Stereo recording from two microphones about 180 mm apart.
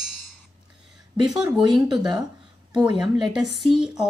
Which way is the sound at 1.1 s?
20° right (ahead or behind).